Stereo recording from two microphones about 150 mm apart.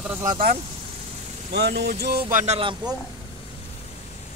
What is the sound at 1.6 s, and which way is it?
Music, 90° right.